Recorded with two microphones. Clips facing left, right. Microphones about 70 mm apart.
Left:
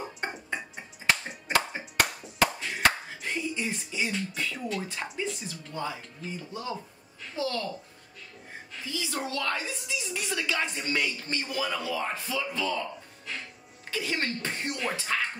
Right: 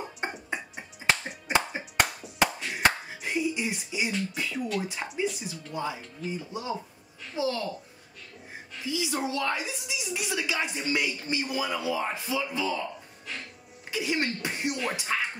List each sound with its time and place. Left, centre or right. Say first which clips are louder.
0.2 s music: right 1 dB; centre
4.1 s a woman's voice: right 1 dB; centre
8.7 s a woman's voice: right 3 dB; centre
13.8 s a sound: right 2 dB; centre
14.8 s music: even; centre